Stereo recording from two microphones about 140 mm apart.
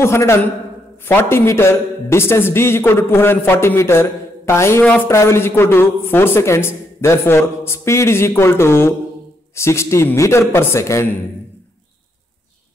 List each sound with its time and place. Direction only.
0.0 s a man's voice: 20° left (ahead or behind)